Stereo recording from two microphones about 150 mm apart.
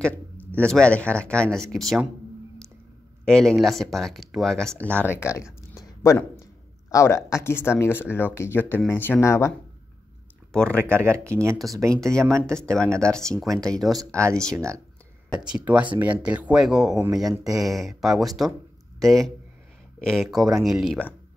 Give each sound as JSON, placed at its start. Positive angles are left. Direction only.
{"t": 0.6, "sound": "speech", "side_deg": 5}
{"t": 3.3, "sound": "speech", "side_deg": 5}
{"t": 10.5, "sound": "speech", "side_deg": 5}
{"t": 10.8, "sound": "speech", "side_deg": -15}
{"t": 12.1, "sound": "speech", "side_deg": 5}
{"t": 15.4, "sound": "speech", "side_deg": -5}
{"t": 17.3, "sound": "speech", "side_deg": -25}
{"t": 17.6, "sound": "speech", "side_deg": 0}